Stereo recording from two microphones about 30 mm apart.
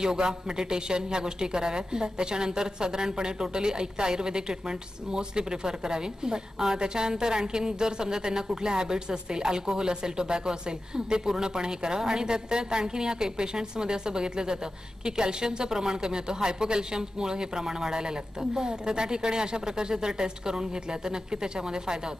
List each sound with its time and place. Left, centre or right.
0.0 s a woman's voice: right